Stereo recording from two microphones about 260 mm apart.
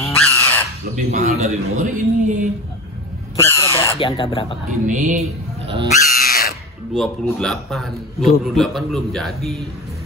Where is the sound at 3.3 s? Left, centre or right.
Centre.